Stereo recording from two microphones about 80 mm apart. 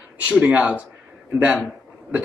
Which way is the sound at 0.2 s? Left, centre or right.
Centre.